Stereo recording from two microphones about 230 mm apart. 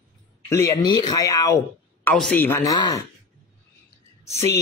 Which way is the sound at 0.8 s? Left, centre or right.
Centre.